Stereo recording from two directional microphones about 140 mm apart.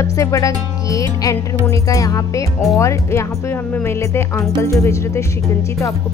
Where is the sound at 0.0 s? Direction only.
20° left (ahead or behind).